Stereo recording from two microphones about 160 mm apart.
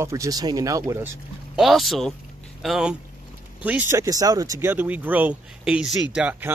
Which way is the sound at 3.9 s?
20° right (ahead or behind).